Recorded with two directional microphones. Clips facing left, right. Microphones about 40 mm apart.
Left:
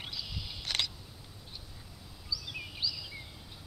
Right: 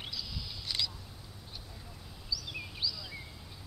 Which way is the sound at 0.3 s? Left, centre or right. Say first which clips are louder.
Left 2 dB; left.